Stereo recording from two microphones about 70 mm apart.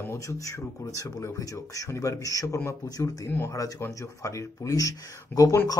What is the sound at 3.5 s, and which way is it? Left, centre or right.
Speech, left.